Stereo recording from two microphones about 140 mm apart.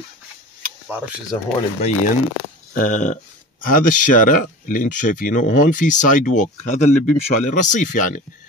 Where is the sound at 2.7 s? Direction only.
70° left (ahead or behind).